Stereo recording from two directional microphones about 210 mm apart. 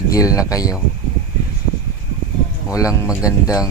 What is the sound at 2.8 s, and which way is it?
Speech, 15° left (ahead or behind).